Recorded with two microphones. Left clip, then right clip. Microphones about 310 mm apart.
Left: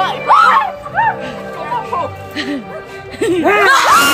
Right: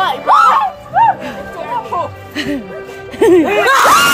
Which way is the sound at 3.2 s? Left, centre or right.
Centre.